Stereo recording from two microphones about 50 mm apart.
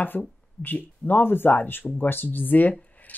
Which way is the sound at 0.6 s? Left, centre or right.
Left.